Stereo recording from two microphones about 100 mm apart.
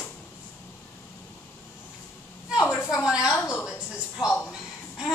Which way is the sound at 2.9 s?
5° right (ahead or behind).